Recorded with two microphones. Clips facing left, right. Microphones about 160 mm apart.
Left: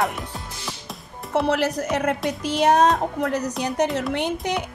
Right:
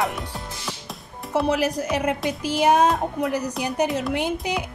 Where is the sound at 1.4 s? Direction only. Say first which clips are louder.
Even; 10° right (ahead or behind).